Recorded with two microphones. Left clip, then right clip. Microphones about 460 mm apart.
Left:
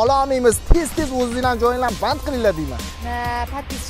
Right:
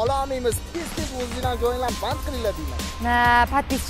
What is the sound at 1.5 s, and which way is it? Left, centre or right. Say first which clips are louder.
Music: left 5 dB; left.